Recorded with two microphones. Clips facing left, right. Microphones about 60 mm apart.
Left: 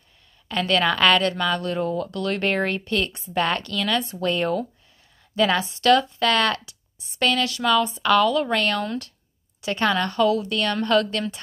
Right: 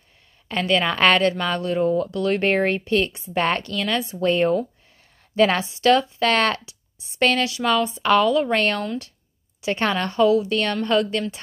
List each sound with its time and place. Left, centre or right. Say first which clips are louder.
0.7 s speech: even; centre
0.9 s a woman's voice: right 1 dB; right; by 11.3 s centre